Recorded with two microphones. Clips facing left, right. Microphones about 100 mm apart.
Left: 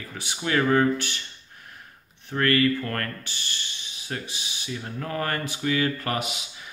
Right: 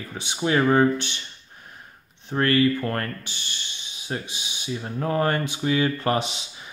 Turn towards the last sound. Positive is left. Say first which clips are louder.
# right 5 dB
turn(degrees=-30)  # may be behind; listen again after turning